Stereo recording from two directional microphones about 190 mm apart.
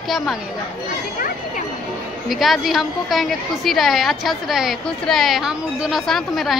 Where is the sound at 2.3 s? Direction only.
Centre (ahead or behind).